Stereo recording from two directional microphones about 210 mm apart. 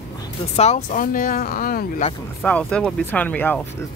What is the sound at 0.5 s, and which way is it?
Speech, 35° left (ahead or behind).